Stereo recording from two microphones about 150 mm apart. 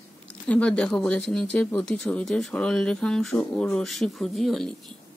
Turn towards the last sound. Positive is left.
turn(degrees=0)  # may be behind; listen again after turning